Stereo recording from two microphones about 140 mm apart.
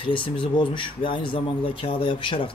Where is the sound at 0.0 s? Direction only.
35° left (ahead or behind).